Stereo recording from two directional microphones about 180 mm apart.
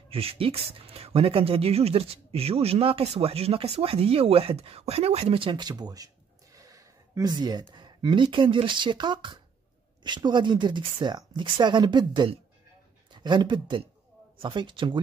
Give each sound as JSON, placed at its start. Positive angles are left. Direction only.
{"t": 0.1, "sound": "speech", "side_deg": -30}